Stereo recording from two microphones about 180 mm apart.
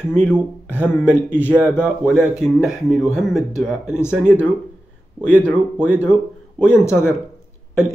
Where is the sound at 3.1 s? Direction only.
Centre (ahead or behind).